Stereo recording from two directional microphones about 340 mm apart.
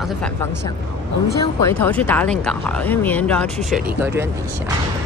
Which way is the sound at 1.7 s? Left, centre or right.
Centre.